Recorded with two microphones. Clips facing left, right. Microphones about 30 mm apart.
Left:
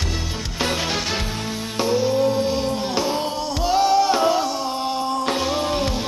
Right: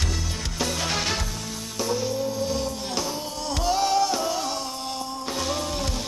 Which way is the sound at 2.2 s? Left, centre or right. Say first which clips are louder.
Left 8 dB; left.